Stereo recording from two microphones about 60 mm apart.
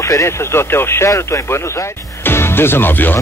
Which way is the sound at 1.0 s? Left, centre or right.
Left.